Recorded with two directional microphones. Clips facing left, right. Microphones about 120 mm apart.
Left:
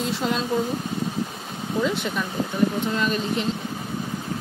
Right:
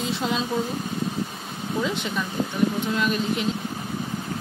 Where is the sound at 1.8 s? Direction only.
Centre (ahead or behind).